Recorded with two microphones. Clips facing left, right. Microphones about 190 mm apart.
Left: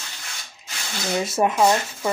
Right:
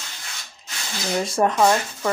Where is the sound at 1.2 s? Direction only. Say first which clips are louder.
Right 1 dB; 5° left (ahead or behind).